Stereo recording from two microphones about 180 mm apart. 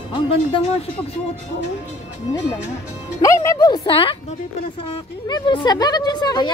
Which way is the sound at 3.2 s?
15° left (ahead or behind).